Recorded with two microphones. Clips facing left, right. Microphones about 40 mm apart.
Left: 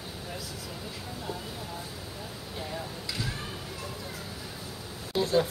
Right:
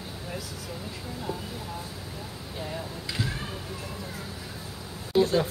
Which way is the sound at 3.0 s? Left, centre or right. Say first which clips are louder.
Right 4 dB; right.